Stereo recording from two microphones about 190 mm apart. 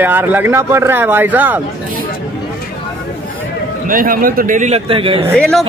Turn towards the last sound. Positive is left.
turn(degrees=5)  # may be behind; listen again after turning